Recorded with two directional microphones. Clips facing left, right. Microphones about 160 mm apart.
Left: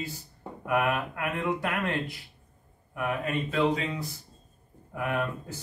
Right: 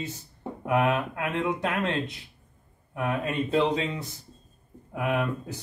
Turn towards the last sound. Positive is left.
turn(degrees=-15)  # may be behind; listen again after turning